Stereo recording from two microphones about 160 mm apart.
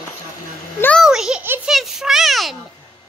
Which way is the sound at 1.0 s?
5° right (ahead or behind).